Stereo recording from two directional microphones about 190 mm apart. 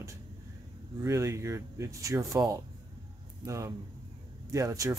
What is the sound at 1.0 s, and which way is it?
Speech, 15° right (ahead or behind).